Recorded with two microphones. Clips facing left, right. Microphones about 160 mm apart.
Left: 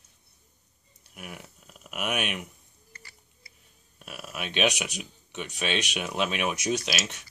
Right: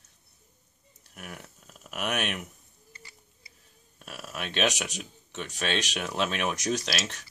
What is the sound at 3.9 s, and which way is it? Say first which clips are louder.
Speech: even; centre (ahead or behind).